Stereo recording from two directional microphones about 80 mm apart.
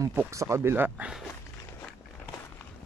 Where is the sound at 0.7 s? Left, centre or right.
Right.